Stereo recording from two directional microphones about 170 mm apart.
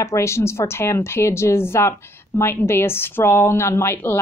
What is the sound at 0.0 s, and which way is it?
Speech, 15° left (ahead or behind).